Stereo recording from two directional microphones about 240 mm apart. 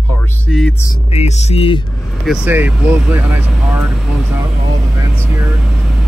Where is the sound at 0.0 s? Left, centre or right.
Centre.